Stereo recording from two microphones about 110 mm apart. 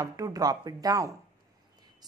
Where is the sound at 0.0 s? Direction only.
35° right (ahead or behind).